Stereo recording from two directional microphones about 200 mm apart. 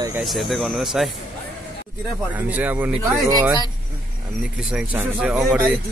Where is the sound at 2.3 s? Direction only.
10° right (ahead or behind).